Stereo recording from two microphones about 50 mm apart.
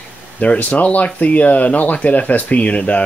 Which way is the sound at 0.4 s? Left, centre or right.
Left.